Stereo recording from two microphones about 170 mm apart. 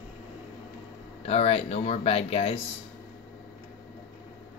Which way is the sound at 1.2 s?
35° left (ahead or behind).